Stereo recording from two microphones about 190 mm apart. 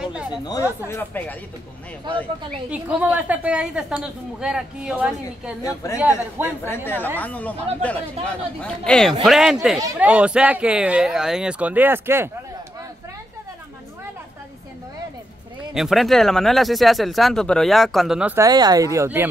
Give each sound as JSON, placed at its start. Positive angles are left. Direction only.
{"t": 0.0, "sound": "a sound", "side_deg": -5}
{"t": 0.3, "sound": "speech", "side_deg": 20}
{"t": 2.7, "sound": "speech", "side_deg": -10}
{"t": 5.6, "sound": "speech", "side_deg": 15}
{"t": 5.9, "sound": "speech", "side_deg": -10}
{"t": 6.6, "sound": "speech", "side_deg": 10}
{"t": 9.8, "sound": "speech", "side_deg": -15}
{"t": 10.0, "sound": "speech", "side_deg": -5}
{"t": 15.7, "sound": "speech", "side_deg": 0}